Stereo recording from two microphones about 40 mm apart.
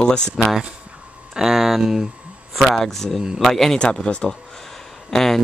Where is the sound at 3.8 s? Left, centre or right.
Left.